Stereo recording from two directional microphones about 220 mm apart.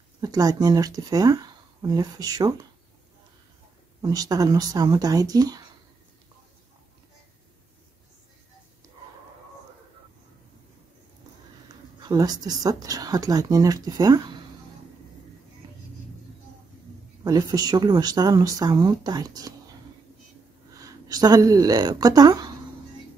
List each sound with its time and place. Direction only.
0.2 s speech: 15° right (ahead or behind)
4.0 s speech: 15° right (ahead or behind)
12.0 s speech: 15° right (ahead or behind)
17.2 s speech: 15° right (ahead or behind)
20.7 s speech: 15° right (ahead or behind)